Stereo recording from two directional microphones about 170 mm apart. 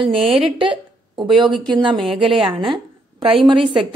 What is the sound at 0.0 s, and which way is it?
A woman's voice, 30° right (ahead or behind).